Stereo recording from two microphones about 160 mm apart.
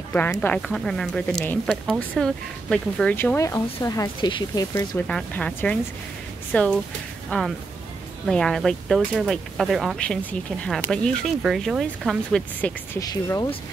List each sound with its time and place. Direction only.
0.1 s speech: 10° left (ahead or behind)
3.3 s speech: 20° left (ahead or behind)
4.7 s speech: 10° left (ahead or behind)
13.0 s speech: 25° left (ahead or behind)